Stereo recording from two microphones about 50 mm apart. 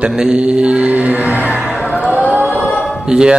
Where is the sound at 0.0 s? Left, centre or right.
Centre.